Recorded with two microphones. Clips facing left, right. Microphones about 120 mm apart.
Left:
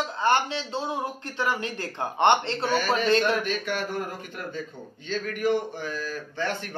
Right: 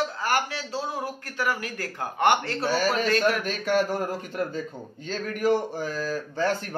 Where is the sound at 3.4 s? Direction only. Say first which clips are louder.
Right 4 dB; 40° right (ahead or behind).